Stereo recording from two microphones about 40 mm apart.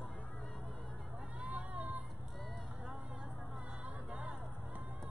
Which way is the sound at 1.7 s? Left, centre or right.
Right.